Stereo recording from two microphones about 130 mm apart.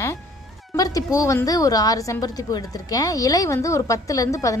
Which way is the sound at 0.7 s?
30° left (ahead or behind).